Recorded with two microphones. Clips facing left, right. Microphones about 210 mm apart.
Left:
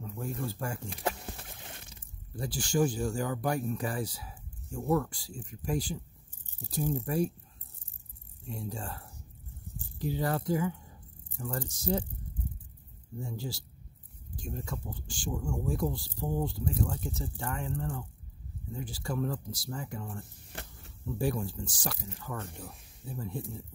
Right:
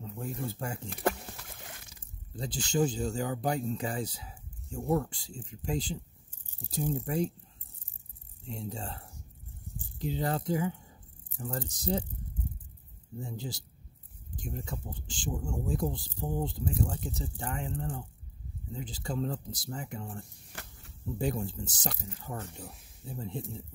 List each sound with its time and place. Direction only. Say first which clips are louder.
0.0 s speech: left 1 dB; 20° right (ahead or behind)
1.3 s a sound: left 1 dB; 30° left (ahead or behind)
2.3 s speech: left 1 dB; 20° right (ahead or behind)
8.5 s speech: even; 25° right (ahead or behind)
13.2 s speech: left 1 dB; 20° right (ahead or behind)